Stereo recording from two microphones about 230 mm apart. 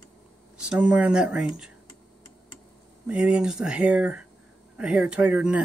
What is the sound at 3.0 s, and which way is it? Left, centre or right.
Speech, centre.